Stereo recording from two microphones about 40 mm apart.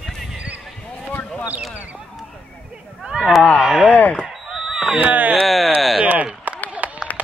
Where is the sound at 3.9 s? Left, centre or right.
Left.